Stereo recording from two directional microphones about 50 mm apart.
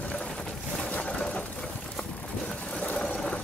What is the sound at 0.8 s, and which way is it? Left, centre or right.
Sewing machine, left.